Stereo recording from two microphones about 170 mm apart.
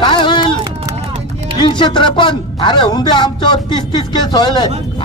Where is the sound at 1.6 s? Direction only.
25° left (ahead or behind).